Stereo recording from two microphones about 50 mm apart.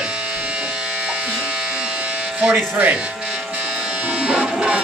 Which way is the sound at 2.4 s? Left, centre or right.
Right.